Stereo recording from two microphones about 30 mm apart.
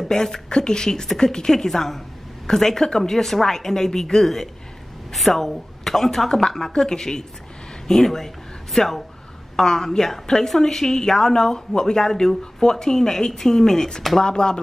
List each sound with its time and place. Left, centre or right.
0.1 s a woman's voice: centre